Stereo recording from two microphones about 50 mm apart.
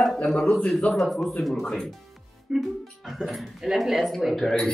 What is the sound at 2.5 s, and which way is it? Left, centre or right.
A man's voice, centre.